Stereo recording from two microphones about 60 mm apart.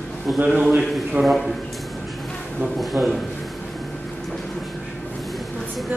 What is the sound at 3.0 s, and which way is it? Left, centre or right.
Speech, right.